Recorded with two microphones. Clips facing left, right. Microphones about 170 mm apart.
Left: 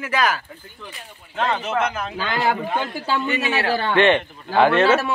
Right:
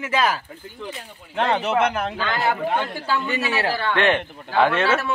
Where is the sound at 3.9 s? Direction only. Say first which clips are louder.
Left 4 dB; centre (ahead or behind).